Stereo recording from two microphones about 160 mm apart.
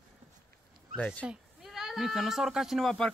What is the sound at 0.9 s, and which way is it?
Speech, 10° left (ahead or behind).